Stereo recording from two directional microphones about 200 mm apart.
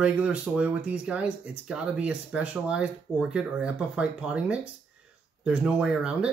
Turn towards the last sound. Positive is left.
turn(degrees=-5)  # may be behind; listen again after turning